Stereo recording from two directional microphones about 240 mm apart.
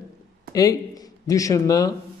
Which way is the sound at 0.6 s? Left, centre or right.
Centre.